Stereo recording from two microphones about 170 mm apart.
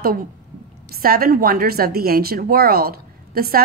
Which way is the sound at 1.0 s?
60° right (ahead or behind).